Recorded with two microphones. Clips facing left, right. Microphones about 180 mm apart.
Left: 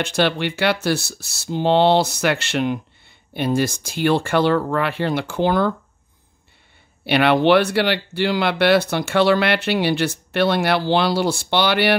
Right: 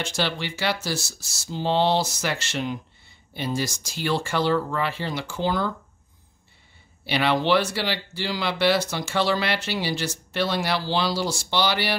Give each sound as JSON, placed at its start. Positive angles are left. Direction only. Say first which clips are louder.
{"t": 0.0, "sound": "speech", "louder": "left 7 dB", "side_deg": 60}
{"t": 7.1, "sound": "speech", "louder": "left 7 dB", "side_deg": 60}